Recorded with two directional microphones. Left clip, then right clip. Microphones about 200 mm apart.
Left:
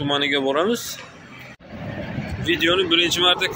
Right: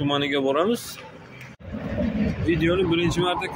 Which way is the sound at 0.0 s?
Centre (ahead or behind).